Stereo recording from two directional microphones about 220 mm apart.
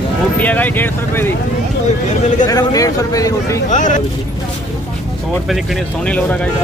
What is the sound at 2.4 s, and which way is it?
A man's voice, 15° left (ahead or behind).